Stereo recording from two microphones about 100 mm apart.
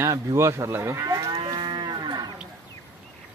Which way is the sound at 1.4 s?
50° right (ahead or behind).